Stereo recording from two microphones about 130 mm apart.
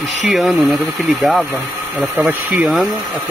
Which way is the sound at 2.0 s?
10° right (ahead or behind).